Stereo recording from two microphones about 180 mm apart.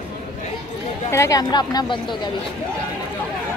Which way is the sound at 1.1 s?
20° left (ahead or behind).